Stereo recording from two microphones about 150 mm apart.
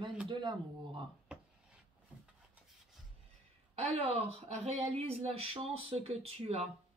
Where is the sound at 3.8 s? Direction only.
45° right (ahead or behind).